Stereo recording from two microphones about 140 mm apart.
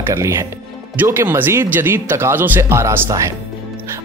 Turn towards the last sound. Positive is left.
turn(degrees=-25)  # may be behind; listen again after turning